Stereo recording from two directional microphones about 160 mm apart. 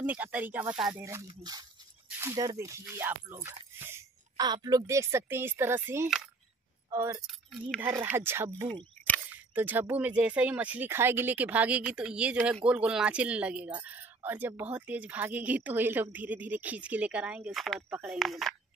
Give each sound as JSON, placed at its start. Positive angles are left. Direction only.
{"t": 0.0, "sound": "speech", "side_deg": -10}
{"t": 2.0, "sound": "a sound", "side_deg": -15}
{"t": 2.3, "sound": "speech", "side_deg": -20}
{"t": 7.2, "sound": "speech", "side_deg": 0}
{"t": 7.8, "sound": "speech", "side_deg": -15}
{"t": 18.2, "sound": "speech", "side_deg": 0}